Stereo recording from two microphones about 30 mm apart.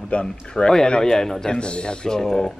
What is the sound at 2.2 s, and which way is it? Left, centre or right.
Speech, centre.